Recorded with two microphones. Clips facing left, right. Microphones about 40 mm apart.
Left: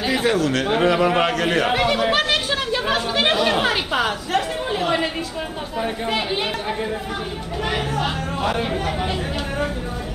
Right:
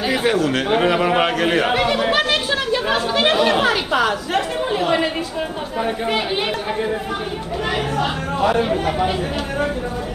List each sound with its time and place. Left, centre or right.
0.0 s a sound: centre
0.5 s a man's voice: centre
1.7 s speech: centre
7.7 s speech: centre